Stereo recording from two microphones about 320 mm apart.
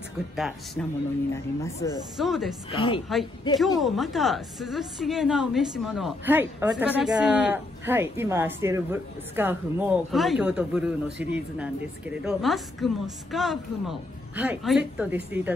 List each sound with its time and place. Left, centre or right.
0.8 s speech: centre
2.7 s speech: centre
3.5 s speech: centre